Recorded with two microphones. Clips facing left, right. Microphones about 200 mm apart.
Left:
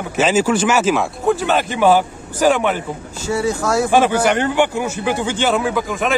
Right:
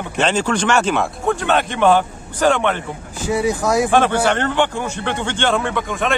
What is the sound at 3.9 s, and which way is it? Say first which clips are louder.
A man's voice: left 1 dB; 10° left (ahead or behind).